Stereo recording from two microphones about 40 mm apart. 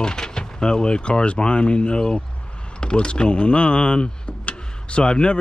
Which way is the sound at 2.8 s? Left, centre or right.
Left.